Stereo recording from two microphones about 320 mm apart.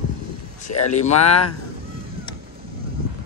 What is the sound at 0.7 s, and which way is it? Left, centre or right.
Speech, left.